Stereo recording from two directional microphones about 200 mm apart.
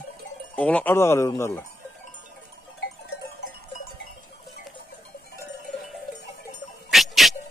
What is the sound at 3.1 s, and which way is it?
Sheep, 55° left (ahead or behind).